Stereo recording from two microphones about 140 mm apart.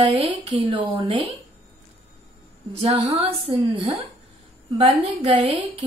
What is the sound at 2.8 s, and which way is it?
Speech, 40° right (ahead or behind).